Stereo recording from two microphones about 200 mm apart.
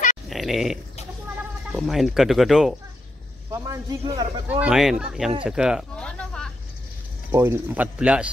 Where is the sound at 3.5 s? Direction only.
15° right (ahead or behind).